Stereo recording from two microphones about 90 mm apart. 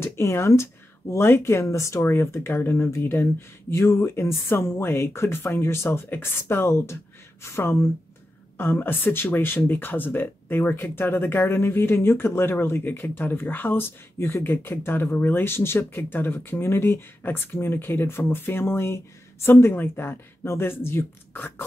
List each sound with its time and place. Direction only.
0.0 s speech: 30° left (ahead or behind)